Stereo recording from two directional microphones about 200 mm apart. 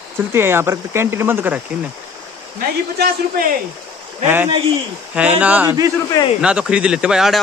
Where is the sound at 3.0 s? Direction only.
55° right (ahead or behind).